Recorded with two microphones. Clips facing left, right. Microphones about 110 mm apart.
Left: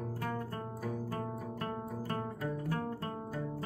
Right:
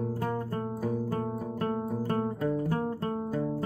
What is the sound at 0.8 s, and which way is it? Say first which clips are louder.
Music: right 6 dB; 30° right (ahead or behind).